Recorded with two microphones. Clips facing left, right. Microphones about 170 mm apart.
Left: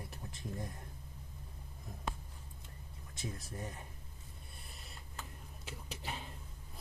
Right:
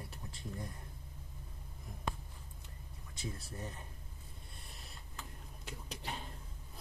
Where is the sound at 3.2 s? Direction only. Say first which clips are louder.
Left 1 dB; 10° left (ahead or behind).